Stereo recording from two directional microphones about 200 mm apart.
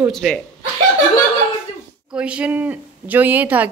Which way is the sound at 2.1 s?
5° right (ahead or behind).